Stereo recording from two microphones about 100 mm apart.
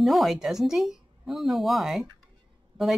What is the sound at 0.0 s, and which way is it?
A woman's voice, centre (ahead or behind).